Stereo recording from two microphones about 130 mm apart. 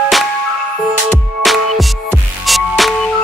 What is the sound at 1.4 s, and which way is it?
Music, centre (ahead or behind).